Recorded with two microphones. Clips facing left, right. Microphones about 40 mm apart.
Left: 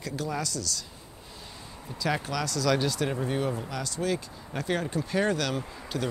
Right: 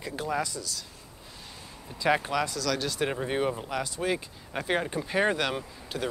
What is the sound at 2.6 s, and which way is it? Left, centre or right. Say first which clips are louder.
Speech: left 4 dB; centre.